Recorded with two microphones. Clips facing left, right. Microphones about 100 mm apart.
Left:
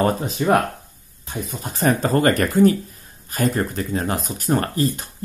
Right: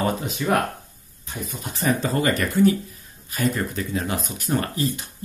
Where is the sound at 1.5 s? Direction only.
40° left (ahead or behind).